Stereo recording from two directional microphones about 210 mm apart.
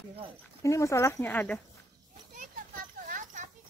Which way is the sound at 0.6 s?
15° left (ahead or behind).